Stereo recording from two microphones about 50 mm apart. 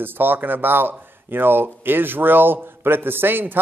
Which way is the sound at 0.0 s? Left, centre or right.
Right.